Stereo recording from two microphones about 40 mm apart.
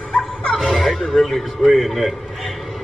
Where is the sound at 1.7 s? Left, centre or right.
Centre.